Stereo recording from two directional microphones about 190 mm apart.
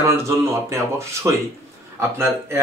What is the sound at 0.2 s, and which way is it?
Speech, 15° right (ahead or behind).